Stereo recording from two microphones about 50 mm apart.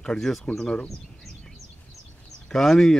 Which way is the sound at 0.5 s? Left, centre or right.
Centre.